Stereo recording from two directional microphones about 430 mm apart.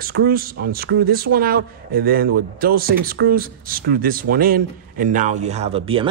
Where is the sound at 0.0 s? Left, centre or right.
Right.